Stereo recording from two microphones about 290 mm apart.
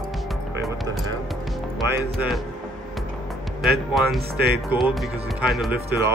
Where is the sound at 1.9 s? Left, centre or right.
Centre.